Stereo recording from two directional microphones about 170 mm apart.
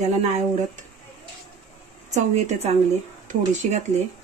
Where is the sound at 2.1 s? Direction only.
40° right (ahead or behind).